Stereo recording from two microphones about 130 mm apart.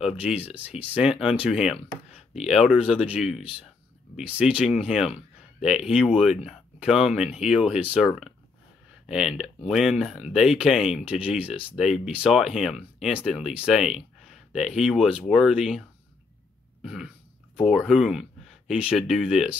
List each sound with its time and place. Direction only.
0.0 s speech: 10° right (ahead or behind)
9.1 s speech: 5° right (ahead or behind)
16.8 s a sound: 5° right (ahead or behind)
17.6 s speech: centre (ahead or behind)